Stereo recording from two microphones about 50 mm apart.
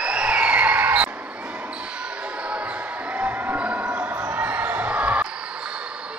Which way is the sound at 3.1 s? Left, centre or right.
Right.